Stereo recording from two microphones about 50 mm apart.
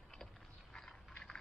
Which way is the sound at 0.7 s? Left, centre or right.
Centre.